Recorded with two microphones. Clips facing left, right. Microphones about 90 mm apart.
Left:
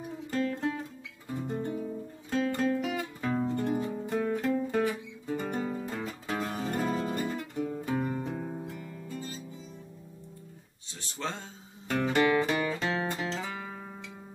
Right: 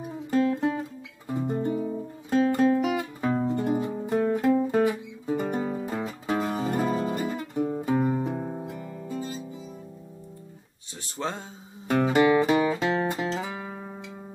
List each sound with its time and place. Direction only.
0.3 s guitar: 15° right (ahead or behind)
2.2 s music: 15° right (ahead or behind)
7.5 s music: 25° right (ahead or behind)
7.8 s music: 15° right (ahead or behind)
11.1 s a sound: 15° right (ahead or behind)
11.9 s music: 15° right (ahead or behind)